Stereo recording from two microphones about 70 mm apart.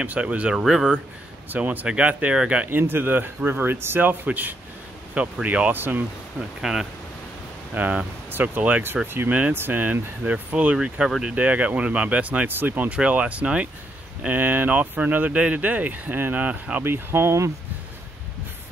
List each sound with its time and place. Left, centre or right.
0.0 s speech: centre
1.5 s speech: right
2.8 s speech: right
6.6 s speech: centre
7.7 s speech: right
11.1 s speech: centre
11.3 s speech: centre
16.8 s speech: right